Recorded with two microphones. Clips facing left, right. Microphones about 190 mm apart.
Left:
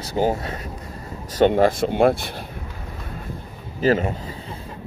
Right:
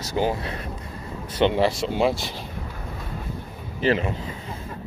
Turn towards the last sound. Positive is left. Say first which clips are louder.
# left 3 dB
turn(degrees=40)  # may be behind; listen again after turning